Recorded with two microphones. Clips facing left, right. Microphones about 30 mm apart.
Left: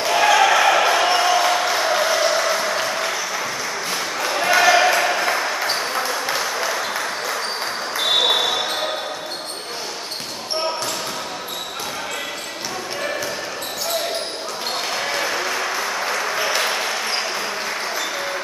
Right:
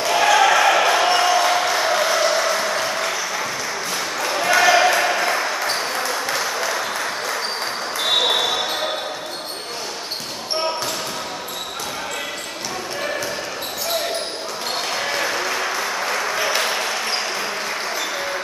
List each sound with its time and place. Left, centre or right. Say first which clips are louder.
0.0 s basketball bounce: even; centre
3.9 s ping: even; centre
14.9 s applause: even; centre